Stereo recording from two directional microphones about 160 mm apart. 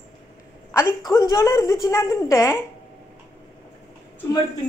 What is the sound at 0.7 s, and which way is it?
A woman's voice, 15° left (ahead or behind).